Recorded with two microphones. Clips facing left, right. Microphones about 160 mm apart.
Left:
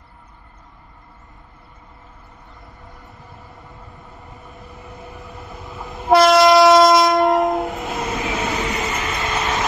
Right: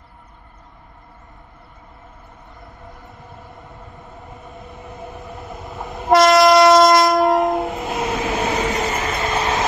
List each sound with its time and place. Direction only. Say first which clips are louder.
5.9 s train: even; centre (ahead or behind)
8.6 s train: right 3 dB; 35° right (ahead or behind)
9.2 s vehicle: right 2 dB; 25° right (ahead or behind)